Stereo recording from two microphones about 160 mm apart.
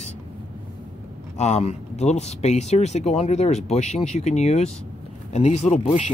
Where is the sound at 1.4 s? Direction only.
45° left (ahead or behind).